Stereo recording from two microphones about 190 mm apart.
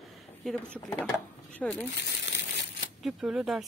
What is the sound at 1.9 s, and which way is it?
Crumpling, 65° left (ahead or behind).